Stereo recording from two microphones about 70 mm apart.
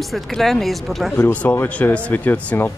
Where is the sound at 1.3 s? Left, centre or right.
Centre.